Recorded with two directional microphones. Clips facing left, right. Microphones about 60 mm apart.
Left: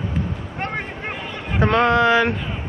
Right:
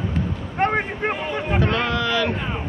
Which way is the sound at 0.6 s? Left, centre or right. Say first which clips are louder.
Right 7 dB; right.